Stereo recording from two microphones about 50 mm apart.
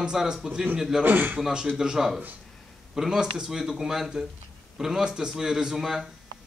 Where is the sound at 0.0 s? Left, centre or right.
Centre.